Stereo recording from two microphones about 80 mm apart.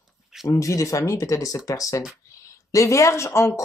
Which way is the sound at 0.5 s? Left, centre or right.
Left.